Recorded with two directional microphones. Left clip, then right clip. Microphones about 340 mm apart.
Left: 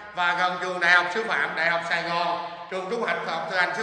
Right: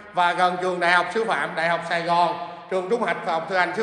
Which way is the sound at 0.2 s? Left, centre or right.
Centre.